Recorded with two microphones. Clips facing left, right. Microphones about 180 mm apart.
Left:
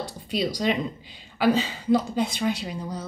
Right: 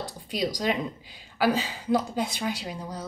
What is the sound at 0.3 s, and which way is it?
A woman's voice, 10° right (ahead or behind).